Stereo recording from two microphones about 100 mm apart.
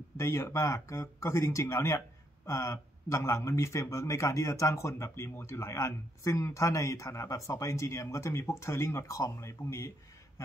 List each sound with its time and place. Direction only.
0.2 s speech: 30° left (ahead or behind)